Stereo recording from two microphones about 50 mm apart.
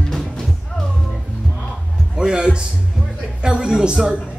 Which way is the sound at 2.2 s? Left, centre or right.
Centre.